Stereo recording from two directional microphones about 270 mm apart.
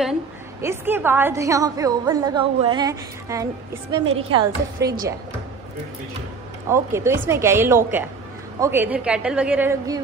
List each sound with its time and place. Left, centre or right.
0.0 s a woman's voice: centre
6.7 s a woman's voice: centre